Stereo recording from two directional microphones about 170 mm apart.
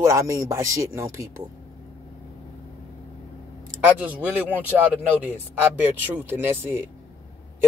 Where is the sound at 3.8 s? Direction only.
10° right (ahead or behind).